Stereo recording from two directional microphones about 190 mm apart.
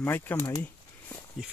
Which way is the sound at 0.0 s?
10° left (ahead or behind).